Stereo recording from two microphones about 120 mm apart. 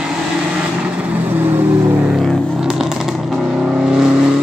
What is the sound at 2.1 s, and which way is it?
Vehicle, centre (ahead or behind).